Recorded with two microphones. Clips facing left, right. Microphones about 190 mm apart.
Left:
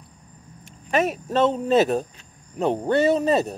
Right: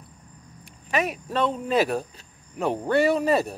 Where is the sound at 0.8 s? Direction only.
25° left (ahead or behind).